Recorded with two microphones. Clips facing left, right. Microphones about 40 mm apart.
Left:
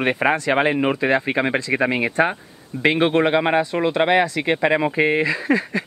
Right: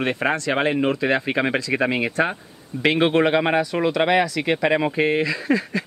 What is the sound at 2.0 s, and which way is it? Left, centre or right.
Speech, centre.